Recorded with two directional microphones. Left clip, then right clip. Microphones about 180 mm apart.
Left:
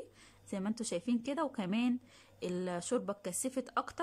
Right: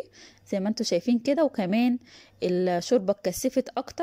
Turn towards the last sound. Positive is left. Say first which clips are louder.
# right 8 dB
turn(degrees=-15)  # may be behind; listen again after turning